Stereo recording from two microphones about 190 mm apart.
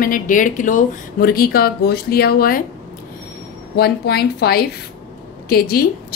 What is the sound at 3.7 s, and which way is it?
A woman's voice, 55° left (ahead or behind).